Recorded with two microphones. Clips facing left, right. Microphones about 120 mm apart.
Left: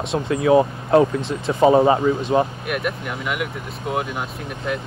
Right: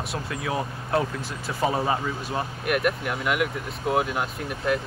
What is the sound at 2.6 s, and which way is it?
Speech, centre (ahead or behind).